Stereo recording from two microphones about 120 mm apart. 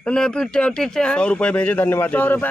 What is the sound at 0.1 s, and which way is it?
Speech, 5° left (ahead or behind).